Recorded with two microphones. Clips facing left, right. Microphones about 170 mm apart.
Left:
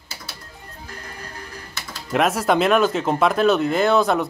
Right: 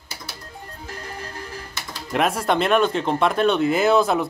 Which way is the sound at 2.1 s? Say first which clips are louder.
Left 2 dB; centre (ahead or behind).